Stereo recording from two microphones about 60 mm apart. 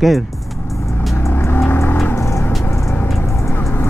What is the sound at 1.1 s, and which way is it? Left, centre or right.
Vehicle, left.